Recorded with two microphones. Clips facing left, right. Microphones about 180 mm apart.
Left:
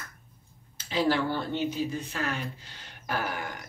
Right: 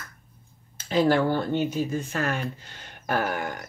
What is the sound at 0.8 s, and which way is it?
Speech, 50° right (ahead or behind).